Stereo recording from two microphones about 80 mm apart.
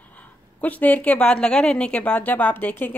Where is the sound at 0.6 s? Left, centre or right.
Centre.